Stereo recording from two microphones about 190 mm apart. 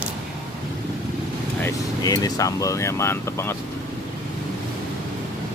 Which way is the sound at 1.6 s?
20° left (ahead or behind).